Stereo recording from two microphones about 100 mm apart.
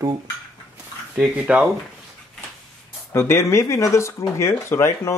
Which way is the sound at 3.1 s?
25° left (ahead or behind).